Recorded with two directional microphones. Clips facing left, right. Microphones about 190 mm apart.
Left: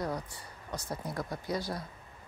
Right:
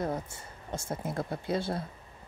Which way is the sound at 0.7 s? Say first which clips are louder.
Right 3 dB; 25° right (ahead or behind).